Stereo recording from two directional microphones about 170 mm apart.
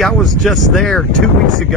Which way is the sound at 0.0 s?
Centre (ahead or behind).